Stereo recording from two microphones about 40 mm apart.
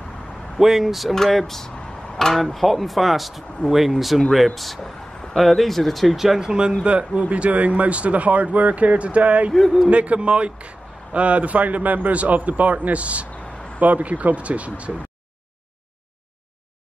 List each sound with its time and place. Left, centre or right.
0.6 s speech: centre
1.1 s a man's voice: centre; by 9.5 s right
9.5 s speech: centre
9.8 s a man's voice: right